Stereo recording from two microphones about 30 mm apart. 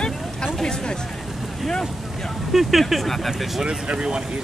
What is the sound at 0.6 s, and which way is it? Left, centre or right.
Speech, left.